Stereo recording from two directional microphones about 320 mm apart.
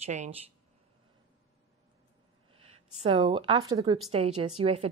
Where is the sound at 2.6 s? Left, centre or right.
Centre.